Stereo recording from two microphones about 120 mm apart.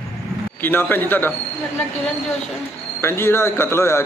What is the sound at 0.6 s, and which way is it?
Speech, 15° left (ahead or behind).